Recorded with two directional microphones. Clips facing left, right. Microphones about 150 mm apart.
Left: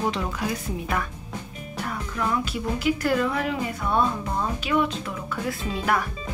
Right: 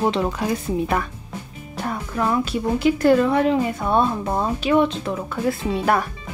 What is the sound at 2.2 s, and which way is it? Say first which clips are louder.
Speech: right 5 dB; 35° right (ahead or behind).